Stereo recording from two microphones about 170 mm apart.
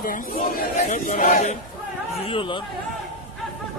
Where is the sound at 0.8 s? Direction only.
50° left (ahead or behind).